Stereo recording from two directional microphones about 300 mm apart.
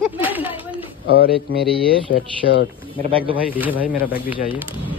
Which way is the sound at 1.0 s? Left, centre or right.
Left.